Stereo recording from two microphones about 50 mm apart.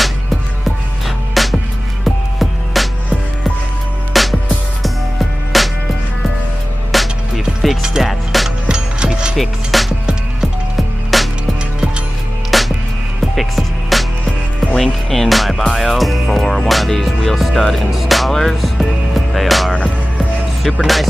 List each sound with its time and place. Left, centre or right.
1.0 s music: centre
4.1 s music: centre
5.5 s music: centre
6.9 s music: centre
7.8 s music: centre
8.1 s music: centre
8.5 s music: centre
9.4 s music: centre
12.4 s music: centre
20.8 s music: centre